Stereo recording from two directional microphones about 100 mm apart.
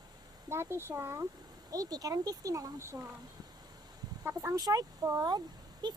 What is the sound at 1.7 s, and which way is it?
Speech, 40° right (ahead or behind).